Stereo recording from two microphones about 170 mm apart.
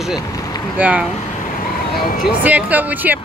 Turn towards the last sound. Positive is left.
turn(degrees=-10)  # may be behind; listen again after turning